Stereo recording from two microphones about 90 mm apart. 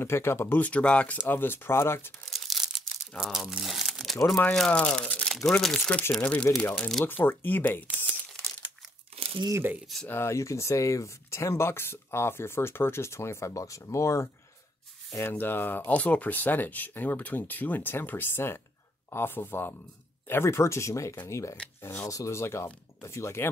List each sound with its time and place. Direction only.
0.0 s speech: 30° left (ahead or behind)
2.3 s a sound: centre (ahead or behind)
3.2 s speech: 5° right (ahead or behind); by 8.2 s 20° left (ahead or behind)
10.0 s speech: 30° left (ahead or behind)